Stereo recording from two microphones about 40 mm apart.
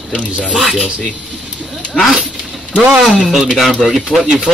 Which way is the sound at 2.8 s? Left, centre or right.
Centre.